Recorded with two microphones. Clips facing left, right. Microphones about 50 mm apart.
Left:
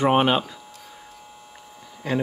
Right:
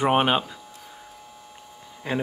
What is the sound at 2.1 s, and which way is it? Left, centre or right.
Speech, centre.